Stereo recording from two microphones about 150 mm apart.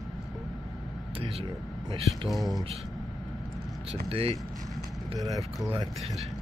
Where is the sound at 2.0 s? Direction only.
Centre (ahead or behind).